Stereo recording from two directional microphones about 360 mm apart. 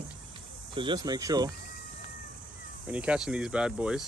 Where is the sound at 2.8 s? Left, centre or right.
Centre.